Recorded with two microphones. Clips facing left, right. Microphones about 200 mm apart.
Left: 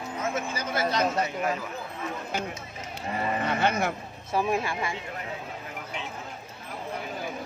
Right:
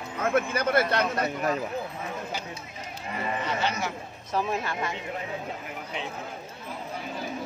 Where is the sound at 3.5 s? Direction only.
55° left (ahead or behind).